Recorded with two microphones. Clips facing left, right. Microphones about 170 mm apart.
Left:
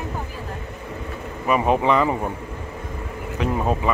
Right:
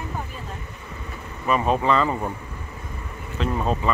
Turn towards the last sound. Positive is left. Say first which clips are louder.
# left 2 dB
turn(degrees=15)  # may be behind; listen again after turning